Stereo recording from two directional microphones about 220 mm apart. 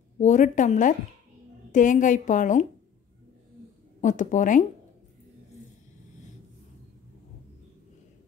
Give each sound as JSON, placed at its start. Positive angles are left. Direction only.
{"t": 0.2, "sound": "a woman's voice", "side_deg": 35}
{"t": 4.0, "sound": "a woman's voice", "side_deg": 35}